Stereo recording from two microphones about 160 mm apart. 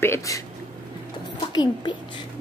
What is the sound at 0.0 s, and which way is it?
Speech, 20° left (ahead or behind).